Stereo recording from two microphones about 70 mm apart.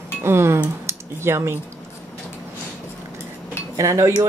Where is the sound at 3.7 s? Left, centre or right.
Right.